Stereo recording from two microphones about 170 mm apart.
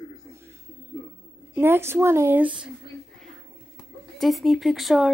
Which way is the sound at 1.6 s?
15° right (ahead or behind).